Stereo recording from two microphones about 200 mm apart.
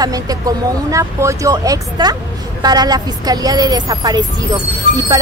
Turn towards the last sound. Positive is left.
turn(degrees=-20)  # may be behind; listen again after turning